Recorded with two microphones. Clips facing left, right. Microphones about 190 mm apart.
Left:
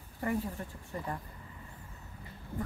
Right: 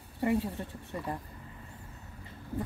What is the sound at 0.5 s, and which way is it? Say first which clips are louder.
Speech: right 2 dB; 25° right (ahead or behind).